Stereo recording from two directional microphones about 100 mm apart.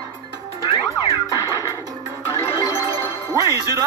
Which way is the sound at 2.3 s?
25° left (ahead or behind).